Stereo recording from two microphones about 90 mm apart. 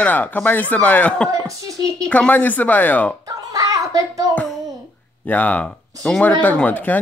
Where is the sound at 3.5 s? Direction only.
40° right (ahead or behind).